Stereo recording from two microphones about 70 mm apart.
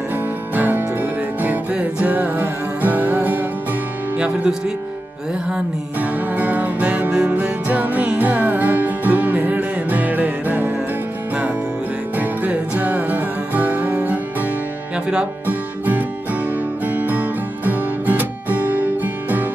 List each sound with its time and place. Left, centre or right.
0.6 s music: right
4.2 s speech: centre
5.9 s music: right
12.2 s music: right
15.4 s music: right